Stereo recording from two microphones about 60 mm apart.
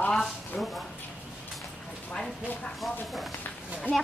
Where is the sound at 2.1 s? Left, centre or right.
Centre.